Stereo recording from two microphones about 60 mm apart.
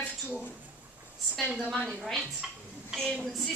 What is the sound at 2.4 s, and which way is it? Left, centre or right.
Speech, centre.